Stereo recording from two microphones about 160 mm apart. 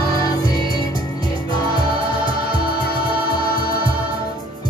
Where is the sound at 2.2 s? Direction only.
30° right (ahead or behind).